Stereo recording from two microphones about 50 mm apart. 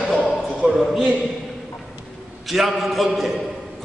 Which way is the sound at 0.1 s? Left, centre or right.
Right.